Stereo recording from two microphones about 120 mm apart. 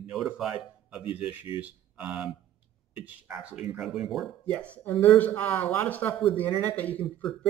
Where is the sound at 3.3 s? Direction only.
10° right (ahead or behind).